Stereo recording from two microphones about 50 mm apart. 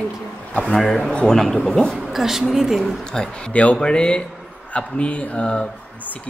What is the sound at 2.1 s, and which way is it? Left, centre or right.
Speech, centre.